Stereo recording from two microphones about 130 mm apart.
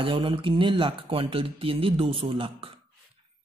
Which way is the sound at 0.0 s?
40° right (ahead or behind).